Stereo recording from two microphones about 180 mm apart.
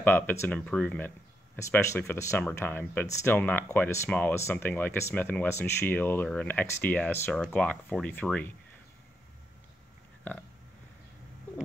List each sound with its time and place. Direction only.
0.0 s speech: 10° left (ahead or behind)